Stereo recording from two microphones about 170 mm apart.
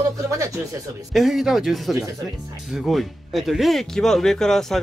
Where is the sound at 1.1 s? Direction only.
Centre (ahead or behind).